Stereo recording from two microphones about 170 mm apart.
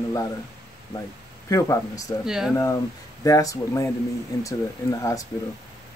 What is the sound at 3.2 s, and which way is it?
Speech, 20° left (ahead or behind).